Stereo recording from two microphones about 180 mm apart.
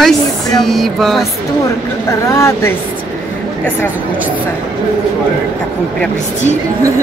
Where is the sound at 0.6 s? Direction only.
Centre (ahead or behind).